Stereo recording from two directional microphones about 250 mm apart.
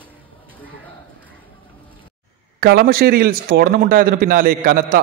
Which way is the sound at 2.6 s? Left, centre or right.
Right.